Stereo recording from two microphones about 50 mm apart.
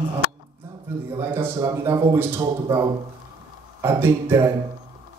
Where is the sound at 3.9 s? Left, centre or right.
Right.